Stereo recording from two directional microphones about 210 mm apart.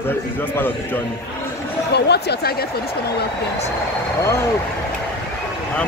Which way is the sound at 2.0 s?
50° left (ahead or behind).